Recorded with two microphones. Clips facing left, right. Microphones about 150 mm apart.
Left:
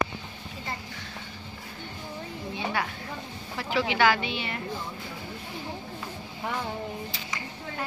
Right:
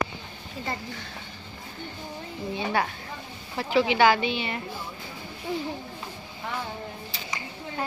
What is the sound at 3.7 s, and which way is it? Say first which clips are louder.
Speech: right 4 dB; 20° right (ahead or behind).